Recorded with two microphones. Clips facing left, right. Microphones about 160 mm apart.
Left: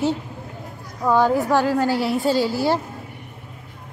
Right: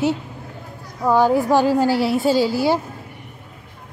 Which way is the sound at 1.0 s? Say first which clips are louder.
Right 2 dB; 10° right (ahead or behind).